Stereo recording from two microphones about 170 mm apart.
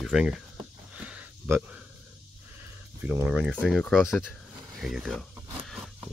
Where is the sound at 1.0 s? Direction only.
5° right (ahead or behind).